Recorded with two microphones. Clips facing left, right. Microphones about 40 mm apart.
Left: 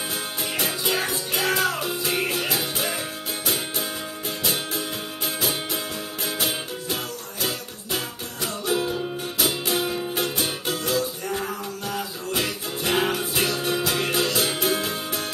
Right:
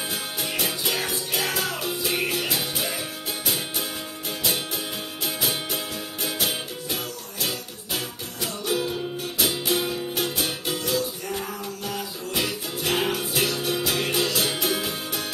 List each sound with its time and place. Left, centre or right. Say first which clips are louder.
0.1 s music: left 1 dB; centre
6.2 s music: even; centre
8.4 s music: left 1 dB; centre
10.1 s music: left 1 dB; left
12.0 s music: left 1 dB; centre